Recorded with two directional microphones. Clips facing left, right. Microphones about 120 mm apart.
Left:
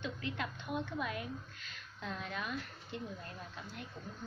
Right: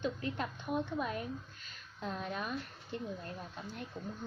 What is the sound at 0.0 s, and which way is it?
A woman's voice, 40° right (ahead or behind).